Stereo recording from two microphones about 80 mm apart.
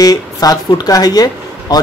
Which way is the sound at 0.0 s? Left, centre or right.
Left.